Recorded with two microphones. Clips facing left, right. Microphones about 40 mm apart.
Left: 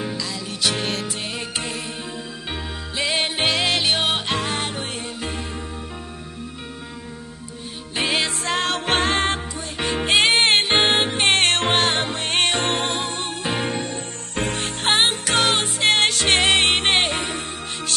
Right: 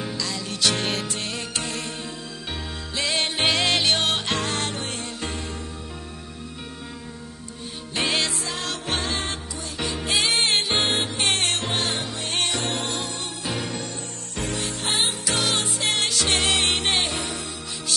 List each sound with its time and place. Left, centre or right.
0.0 s music: centre
3.0 s music: centre
3.4 s music: centre
7.9 s music: centre
8.3 s music: left